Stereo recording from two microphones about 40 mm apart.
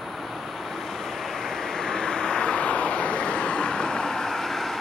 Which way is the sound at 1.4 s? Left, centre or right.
Centre.